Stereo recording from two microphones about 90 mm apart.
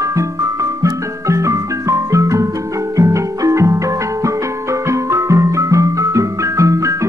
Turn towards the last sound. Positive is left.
turn(degrees=-35)  # may be behind; listen again after turning